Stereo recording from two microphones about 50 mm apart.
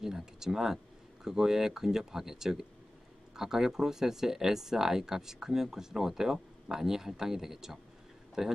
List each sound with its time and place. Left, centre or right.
0.0 s speech: centre